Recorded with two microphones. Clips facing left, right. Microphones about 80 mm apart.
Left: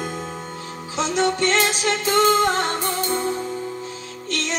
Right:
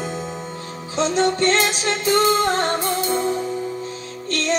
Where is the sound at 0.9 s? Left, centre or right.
Right.